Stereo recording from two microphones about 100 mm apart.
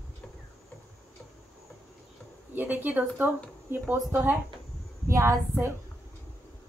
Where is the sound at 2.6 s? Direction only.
15° right (ahead or behind).